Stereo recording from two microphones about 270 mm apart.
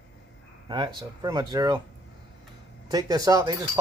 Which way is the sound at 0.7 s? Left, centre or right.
Centre.